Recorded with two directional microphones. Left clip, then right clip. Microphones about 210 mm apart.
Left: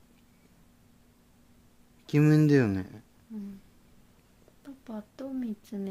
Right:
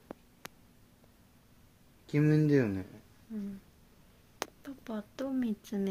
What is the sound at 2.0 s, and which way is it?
Speech, 55° left (ahead or behind).